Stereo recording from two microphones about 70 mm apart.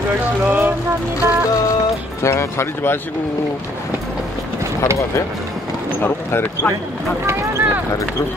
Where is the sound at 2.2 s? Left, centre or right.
Left.